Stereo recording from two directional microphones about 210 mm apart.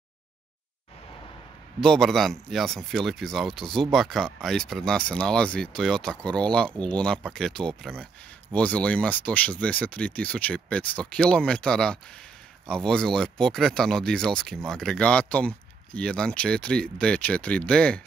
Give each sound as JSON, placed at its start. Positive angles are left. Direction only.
{"t": 1.8, "sound": "speech", "side_deg": 0}